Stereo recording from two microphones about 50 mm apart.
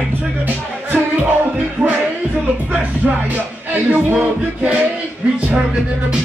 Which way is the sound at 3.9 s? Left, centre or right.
Right.